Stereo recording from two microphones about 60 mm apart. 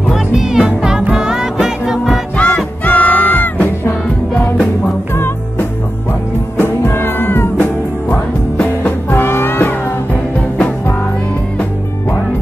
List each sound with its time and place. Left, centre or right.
0.1 s music: centre
2.3 s music: left
5.1 s music: left
8.8 s music: left